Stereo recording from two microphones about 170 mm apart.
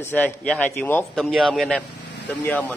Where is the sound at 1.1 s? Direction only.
Centre (ahead or behind).